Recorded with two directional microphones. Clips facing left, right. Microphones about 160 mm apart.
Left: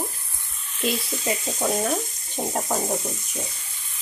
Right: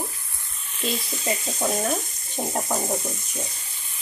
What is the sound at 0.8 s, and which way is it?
Speech, 5° left (ahead or behind).